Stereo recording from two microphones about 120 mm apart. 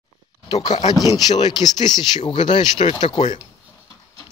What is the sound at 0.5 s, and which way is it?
Speech, 35° left (ahead or behind).